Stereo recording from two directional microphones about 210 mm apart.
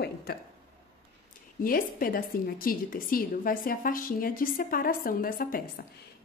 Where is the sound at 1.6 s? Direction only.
45° left (ahead or behind).